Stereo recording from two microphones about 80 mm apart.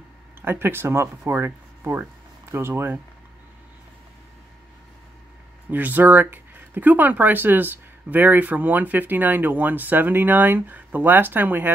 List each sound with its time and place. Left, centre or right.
0.4 s speech: right
5.7 s speech: right